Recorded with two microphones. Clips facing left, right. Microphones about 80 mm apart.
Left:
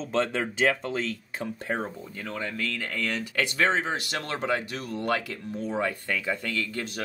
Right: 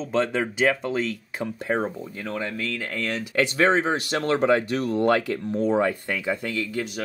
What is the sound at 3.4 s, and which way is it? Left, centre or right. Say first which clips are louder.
Speech: right 5 dB; right.